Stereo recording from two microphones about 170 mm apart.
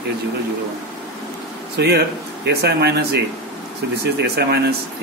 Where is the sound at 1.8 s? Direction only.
75° right (ahead or behind).